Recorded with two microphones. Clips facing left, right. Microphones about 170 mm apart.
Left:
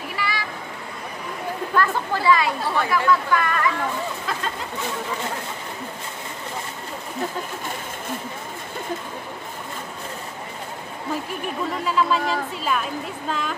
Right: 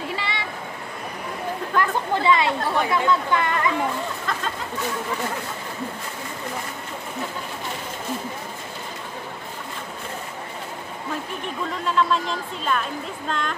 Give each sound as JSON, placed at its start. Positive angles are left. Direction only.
{"t": 0.1, "sound": "a sound", "side_deg": -25}
{"t": 1.8, "sound": "speech", "side_deg": -20}
{"t": 4.3, "sound": "a woman's voice", "side_deg": 5}
{"t": 11.4, "sound": "a woman's voice", "side_deg": 5}